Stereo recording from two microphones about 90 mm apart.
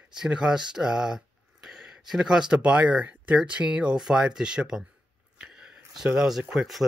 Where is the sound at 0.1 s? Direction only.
10° right (ahead or behind).